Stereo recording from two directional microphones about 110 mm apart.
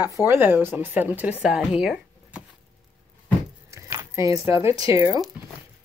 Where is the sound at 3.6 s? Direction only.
30° right (ahead or behind).